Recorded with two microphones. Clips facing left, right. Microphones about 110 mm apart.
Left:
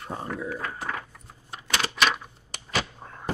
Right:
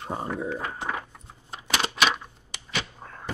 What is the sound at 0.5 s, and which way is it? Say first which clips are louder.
Speech: right 1 dB; 20° right (ahead or behind).